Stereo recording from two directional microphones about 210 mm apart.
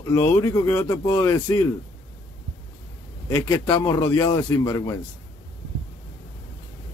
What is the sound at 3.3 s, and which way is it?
Speech, 15° left (ahead or behind).